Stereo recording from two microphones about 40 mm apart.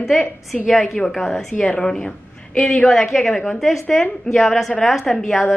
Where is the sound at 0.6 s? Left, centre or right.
Centre.